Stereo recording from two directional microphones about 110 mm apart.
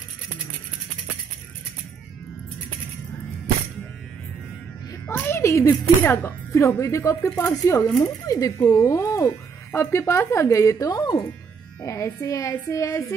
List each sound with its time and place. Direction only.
5.0 s speech: 20° left (ahead or behind); by 11.2 s 40° left (ahead or behind)
11.8 s speech: 30° left (ahead or behind)